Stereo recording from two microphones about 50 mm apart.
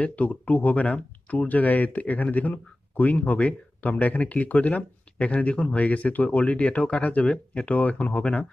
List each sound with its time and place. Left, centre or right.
0.0 s speech: left